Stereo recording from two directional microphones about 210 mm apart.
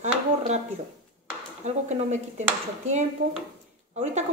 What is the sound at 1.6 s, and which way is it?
Speech, 35° right (ahead or behind).